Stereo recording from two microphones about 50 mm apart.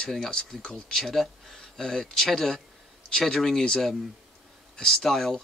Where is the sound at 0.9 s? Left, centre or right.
Centre.